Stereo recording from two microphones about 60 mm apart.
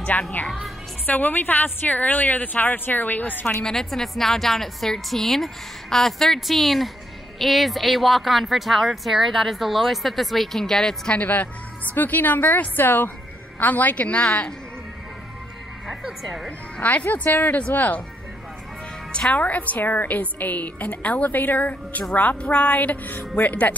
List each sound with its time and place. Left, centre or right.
0.1 s a woman's voice: left
3.6 s speech: centre
11.1 s a woman's voice: left
15.9 s speech: centre
16.7 s a woman's voice: left
19.3 s a woman's voice: left